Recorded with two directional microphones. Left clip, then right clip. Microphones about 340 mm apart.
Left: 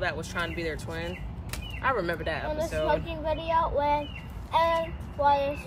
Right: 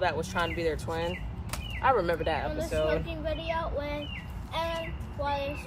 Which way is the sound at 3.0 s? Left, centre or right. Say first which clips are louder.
Left 3 dB; centre.